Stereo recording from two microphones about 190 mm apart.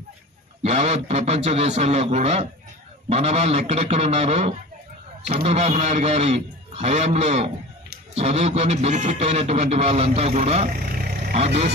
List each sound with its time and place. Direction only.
0.6 s a man's voice: 35° right (ahead or behind)